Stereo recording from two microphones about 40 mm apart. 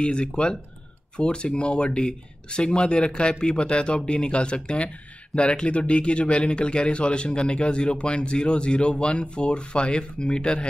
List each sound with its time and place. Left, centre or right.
0.0 s speech: left